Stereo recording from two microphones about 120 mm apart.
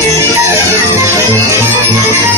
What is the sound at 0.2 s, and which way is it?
Music, 20° right (ahead or behind).